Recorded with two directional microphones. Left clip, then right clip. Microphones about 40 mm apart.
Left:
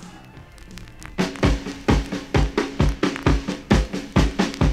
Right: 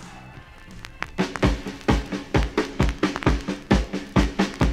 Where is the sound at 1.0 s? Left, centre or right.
Left.